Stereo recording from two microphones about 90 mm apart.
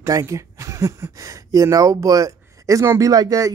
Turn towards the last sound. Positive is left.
turn(degrees=-40)  # may be behind; listen again after turning